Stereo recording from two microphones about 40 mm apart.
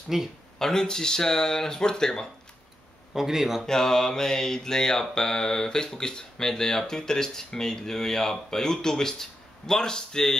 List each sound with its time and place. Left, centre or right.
0.1 s speech: centre
0.6 s mantra: centre
3.1 s speech: centre
3.6 s mantra: centre